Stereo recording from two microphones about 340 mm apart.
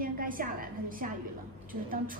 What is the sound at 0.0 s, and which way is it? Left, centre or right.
A woman's voice, right.